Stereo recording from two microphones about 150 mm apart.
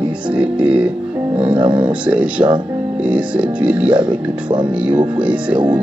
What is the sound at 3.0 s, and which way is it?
Speech, 10° right (ahead or behind).